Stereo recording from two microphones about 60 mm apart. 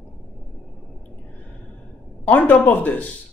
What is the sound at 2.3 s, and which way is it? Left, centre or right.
Speech, left.